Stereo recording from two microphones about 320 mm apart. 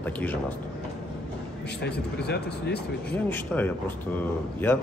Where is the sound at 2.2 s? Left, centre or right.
Left.